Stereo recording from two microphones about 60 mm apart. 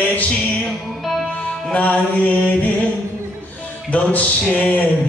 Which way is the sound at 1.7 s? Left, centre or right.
Left.